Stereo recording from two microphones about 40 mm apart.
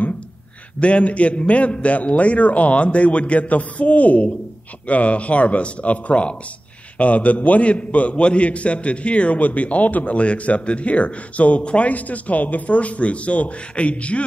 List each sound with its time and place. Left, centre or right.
0.7 s a man's voice: left